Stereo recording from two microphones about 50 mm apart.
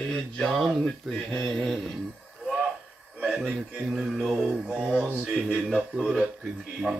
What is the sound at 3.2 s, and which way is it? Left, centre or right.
Speech, centre.